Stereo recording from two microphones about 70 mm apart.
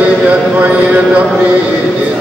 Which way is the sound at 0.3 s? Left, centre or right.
Centre.